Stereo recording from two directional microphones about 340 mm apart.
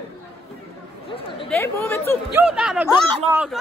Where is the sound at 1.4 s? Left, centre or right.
Centre.